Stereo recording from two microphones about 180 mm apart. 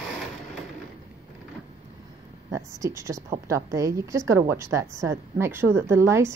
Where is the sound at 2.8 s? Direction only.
15° right (ahead or behind).